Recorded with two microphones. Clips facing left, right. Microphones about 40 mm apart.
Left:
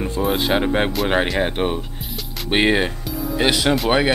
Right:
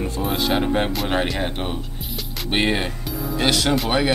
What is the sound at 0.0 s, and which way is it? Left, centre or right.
Speech, centre.